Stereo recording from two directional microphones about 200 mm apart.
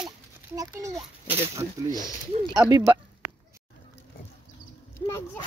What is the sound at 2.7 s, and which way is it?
Speech, 15° right (ahead or behind).